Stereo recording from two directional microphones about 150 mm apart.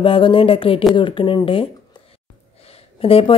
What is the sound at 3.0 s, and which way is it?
Speech, 40° left (ahead or behind).